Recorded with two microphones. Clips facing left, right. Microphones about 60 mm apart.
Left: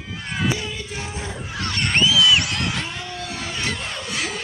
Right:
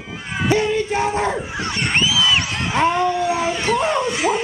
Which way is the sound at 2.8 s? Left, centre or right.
Right.